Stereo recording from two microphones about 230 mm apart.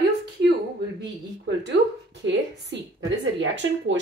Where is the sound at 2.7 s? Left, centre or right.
Right.